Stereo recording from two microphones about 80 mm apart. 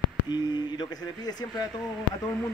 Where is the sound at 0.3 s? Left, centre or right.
Left.